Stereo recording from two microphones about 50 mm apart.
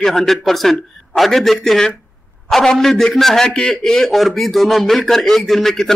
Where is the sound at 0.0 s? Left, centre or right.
Centre.